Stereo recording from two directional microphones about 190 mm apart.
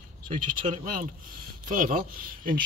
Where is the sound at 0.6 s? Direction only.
45° right (ahead or behind).